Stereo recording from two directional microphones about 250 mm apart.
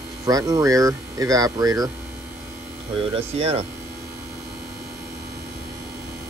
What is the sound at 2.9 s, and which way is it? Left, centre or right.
Speech, right.